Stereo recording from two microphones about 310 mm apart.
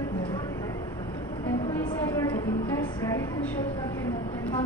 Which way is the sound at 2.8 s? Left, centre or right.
Centre.